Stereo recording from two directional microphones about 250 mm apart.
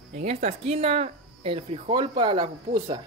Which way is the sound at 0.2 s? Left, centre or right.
Right.